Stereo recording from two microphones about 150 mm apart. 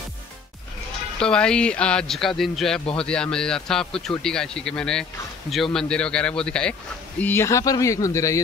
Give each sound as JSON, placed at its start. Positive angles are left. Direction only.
{"t": 1.2, "sound": "a man's voice", "side_deg": 5}